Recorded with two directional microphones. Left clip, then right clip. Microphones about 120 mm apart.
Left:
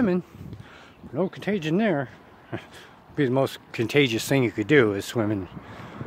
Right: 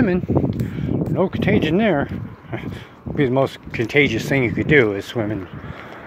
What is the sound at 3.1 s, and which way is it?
Speech, 40° left (ahead or behind).